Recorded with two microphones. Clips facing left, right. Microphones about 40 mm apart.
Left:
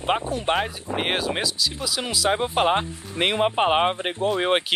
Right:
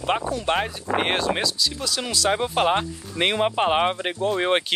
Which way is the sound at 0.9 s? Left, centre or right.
Centre.